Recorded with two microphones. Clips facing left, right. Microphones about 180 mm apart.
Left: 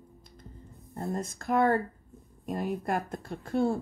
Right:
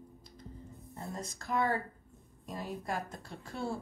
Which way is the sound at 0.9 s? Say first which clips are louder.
Left 9 dB; 55° left (ahead or behind).